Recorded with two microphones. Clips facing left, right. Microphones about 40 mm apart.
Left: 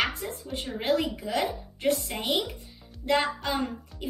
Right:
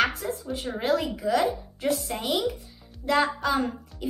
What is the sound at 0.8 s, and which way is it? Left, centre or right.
Speech, left.